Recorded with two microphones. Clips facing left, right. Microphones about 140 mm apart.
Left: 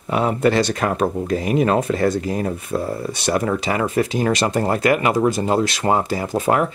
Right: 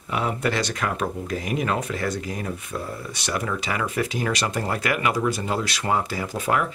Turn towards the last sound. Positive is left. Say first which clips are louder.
# left 6 dB
turn(degrees=35)  # may be behind; listen again after turning